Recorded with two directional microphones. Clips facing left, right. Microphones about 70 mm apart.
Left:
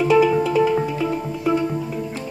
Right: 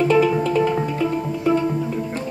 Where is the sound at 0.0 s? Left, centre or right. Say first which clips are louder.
Left 1 dB; centre.